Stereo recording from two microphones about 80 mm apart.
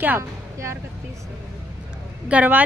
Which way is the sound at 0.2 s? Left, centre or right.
Right.